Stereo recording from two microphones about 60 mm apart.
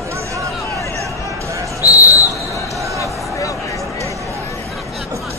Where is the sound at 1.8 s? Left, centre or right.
Left.